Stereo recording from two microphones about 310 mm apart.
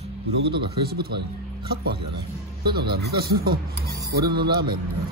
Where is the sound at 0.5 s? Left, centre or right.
Right.